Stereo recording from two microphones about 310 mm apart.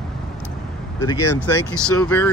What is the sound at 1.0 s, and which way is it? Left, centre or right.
Speech, centre.